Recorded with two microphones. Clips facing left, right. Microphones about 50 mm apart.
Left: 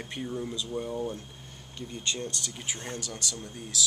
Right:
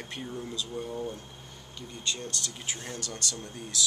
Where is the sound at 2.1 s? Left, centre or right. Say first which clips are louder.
Left 2 dB; left.